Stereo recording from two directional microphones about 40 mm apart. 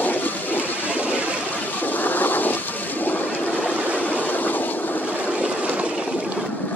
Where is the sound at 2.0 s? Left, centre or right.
Left.